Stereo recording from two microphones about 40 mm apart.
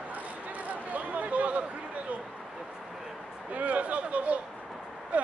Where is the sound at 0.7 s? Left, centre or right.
Right.